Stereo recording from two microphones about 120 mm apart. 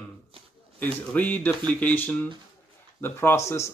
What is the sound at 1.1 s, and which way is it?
Speech, 15° left (ahead or behind).